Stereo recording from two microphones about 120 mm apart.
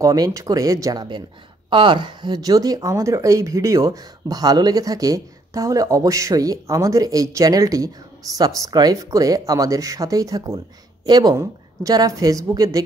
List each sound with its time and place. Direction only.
0.0 s a woman's voice: 30° right (ahead or behind)